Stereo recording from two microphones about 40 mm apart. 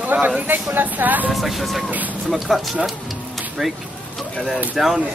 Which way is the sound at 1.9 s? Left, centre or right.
Right.